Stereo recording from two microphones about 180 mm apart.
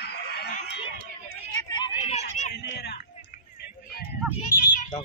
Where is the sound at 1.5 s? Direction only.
20° left (ahead or behind).